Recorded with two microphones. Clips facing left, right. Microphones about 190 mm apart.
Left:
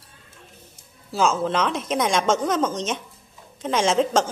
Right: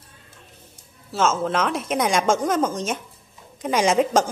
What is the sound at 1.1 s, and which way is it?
A woman's voice, centre (ahead or behind).